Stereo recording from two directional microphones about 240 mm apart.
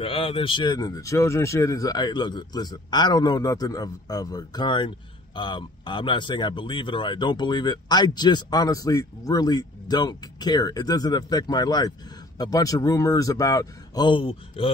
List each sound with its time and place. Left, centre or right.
0.0 s speech: left